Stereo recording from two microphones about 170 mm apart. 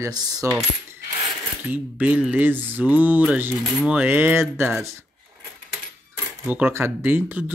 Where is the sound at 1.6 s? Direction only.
10° right (ahead or behind).